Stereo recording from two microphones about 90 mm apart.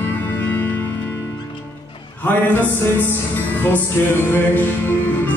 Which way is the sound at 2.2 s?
20° left (ahead or behind).